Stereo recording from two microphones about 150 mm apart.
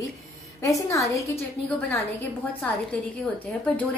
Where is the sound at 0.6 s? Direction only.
20° left (ahead or behind).